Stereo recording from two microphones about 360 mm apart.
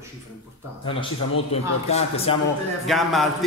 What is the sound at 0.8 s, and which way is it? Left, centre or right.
A man's voice, centre.